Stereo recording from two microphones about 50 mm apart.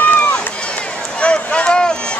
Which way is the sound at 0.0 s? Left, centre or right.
Left.